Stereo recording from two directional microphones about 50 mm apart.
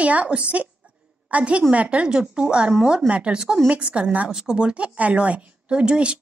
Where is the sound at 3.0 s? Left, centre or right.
Right.